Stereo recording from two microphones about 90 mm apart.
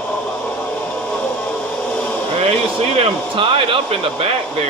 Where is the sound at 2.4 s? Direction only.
90° right.